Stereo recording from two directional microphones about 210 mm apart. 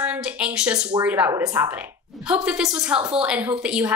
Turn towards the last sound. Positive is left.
turn(degrees=-5)  # may be behind; listen again after turning